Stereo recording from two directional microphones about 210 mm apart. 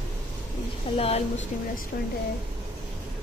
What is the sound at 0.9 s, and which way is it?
Speech, 30° left (ahead or behind).